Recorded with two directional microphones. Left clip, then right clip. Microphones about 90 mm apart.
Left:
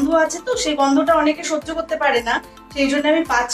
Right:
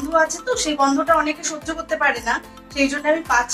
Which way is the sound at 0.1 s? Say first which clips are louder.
Right 3 dB; 35° left (ahead or behind).